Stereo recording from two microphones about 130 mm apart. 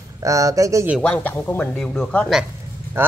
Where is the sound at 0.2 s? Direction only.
25° right (ahead or behind).